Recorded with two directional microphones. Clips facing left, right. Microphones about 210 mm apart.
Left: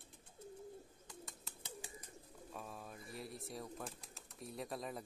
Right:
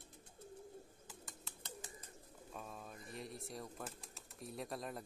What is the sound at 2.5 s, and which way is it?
Speech, centre (ahead or behind).